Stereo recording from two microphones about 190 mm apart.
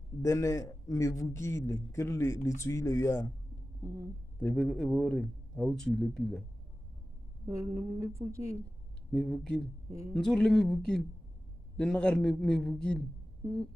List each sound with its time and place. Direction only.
0.2 s a man's voice: 15° left (ahead or behind)
3.8 s a woman's voice: 15° right (ahead or behind)
4.4 s speech: 5° left (ahead or behind)
7.4 s a woman's voice: 15° right (ahead or behind)
9.1 s speech: centre (ahead or behind)